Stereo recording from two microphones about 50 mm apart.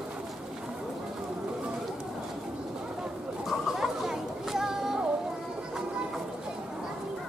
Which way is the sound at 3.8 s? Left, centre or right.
Centre.